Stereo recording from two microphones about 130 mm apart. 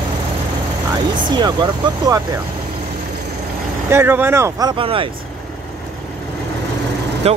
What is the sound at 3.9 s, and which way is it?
Speech, 15° right (ahead or behind).